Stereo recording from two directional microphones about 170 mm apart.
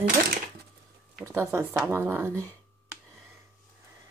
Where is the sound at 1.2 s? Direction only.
15° right (ahead or behind).